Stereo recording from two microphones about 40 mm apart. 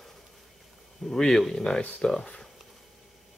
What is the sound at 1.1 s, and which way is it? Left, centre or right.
Speech, centre.